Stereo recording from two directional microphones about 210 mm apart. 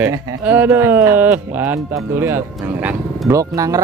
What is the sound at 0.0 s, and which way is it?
Speech, 10° right (ahead or behind).